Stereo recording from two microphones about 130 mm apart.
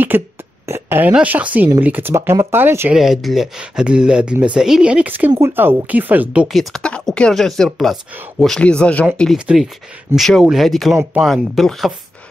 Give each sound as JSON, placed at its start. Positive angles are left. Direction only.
{"t": 0.1, "sound": "speech", "side_deg": -15}
{"t": 0.7, "sound": "a sound", "side_deg": -20}
{"t": 1.1, "sound": "speech", "side_deg": -10}
{"t": 2.9, "sound": "speech", "side_deg": 0}
{"t": 6.4, "sound": "speech", "side_deg": 0}